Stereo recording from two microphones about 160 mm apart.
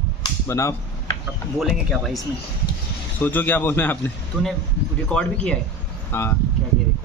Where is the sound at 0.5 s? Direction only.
20° left (ahead or behind).